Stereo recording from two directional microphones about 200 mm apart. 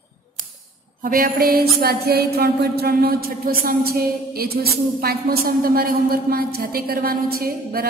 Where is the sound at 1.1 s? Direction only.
45° right (ahead or behind).